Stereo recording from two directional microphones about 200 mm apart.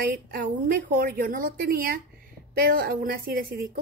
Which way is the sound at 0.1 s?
45° right (ahead or behind).